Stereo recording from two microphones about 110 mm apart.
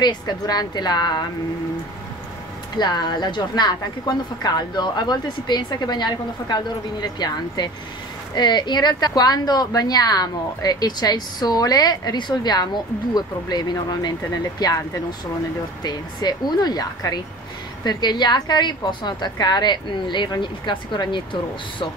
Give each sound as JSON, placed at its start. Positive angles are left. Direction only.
{"t": 0.0, "sound": "speech", "side_deg": 40}
{"t": 2.8, "sound": "speech", "side_deg": 40}